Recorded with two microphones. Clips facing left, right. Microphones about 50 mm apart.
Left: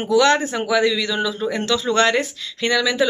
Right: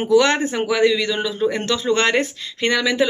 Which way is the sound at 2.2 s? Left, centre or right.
Right.